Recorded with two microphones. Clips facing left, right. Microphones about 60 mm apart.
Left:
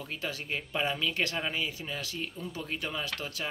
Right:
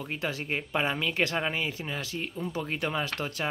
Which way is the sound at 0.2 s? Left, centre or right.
Right.